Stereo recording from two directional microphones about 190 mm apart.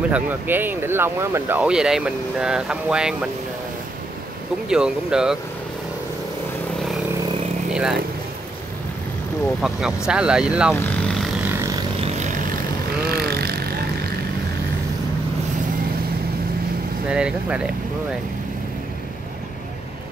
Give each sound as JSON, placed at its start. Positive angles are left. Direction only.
{"t": 0.1, "sound": "speech", "side_deg": -10}
{"t": 4.6, "sound": "speech", "side_deg": -5}
{"t": 7.7, "sound": "speech", "side_deg": -5}
{"t": 9.6, "sound": "speech", "side_deg": 0}
{"t": 10.7, "sound": "speech", "side_deg": 15}
{"t": 12.0, "sound": "vehicle", "side_deg": -40}
{"t": 13.0, "sound": "vehicle", "side_deg": -55}
{"t": 17.1, "sound": "speech", "side_deg": -5}